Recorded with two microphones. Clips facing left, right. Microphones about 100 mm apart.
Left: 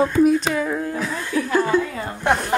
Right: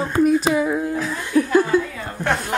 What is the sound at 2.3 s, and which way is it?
Speech, 20° left (ahead or behind).